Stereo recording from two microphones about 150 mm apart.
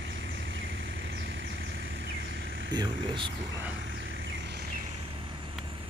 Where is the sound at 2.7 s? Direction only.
30° right (ahead or behind).